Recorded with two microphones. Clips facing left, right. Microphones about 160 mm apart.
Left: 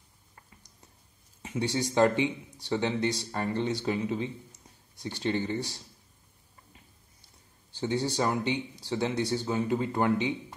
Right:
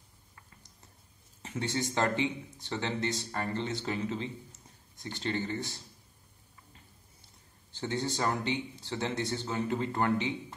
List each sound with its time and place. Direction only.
1.4 s speech: 15° left (ahead or behind)
7.7 s speech: 15° left (ahead or behind)